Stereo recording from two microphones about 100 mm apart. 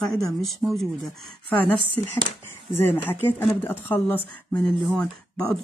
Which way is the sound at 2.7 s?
20° left (ahead or behind).